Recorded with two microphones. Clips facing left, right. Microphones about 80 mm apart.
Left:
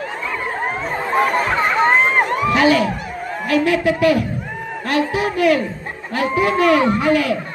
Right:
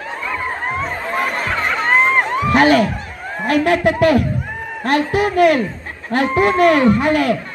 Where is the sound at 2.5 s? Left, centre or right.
Right.